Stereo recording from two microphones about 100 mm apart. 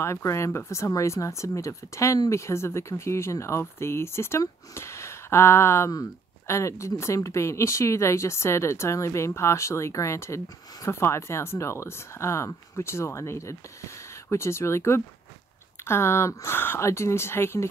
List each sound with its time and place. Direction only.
0.0 s speech: 30° left (ahead or behind)